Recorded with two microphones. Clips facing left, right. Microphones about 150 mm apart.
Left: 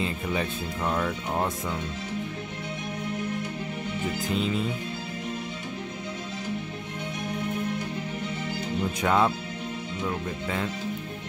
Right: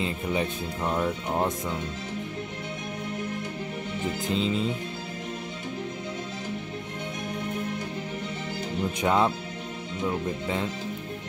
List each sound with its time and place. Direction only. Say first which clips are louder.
0.0 s speech: right 1 dB; 20° right (ahead or behind)
4.3 s speech: right 1 dB; 25° right (ahead or behind)
9.0 s speech: even; 20° right (ahead or behind)